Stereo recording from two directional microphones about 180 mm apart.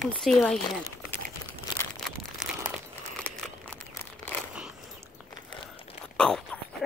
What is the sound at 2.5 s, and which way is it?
Crumpling, 5° right (ahead or behind).